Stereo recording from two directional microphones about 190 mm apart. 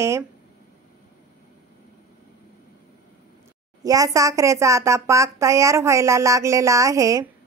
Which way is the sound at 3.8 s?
20° right (ahead or behind).